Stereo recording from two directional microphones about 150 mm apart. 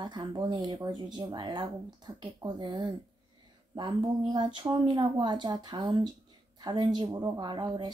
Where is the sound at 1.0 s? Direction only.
30° right (ahead or behind).